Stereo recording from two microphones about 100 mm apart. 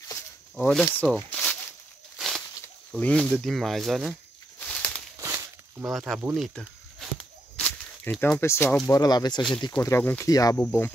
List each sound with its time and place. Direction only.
0.6 s speech: 10° left (ahead or behind)
1.0 s zipper: 10° left (ahead or behind)
2.1 s a sound: centre (ahead or behind)
3.0 s speech: 10° left (ahead or behind)
3.3 s speech: centre (ahead or behind)
4.6 s a sound: 10° left (ahead or behind)
5.9 s speech: centre (ahead or behind)
6.3 s a sound: centre (ahead or behind)
7.5 s walk: 15° left (ahead or behind)
8.2 s speech: 25° left (ahead or behind)
8.8 s speech: 40° left (ahead or behind)
9.8 s speech: 25° left (ahead or behind)
10.2 s speech: 35° left (ahead or behind)
10.6 s speech: 15° left (ahead or behind)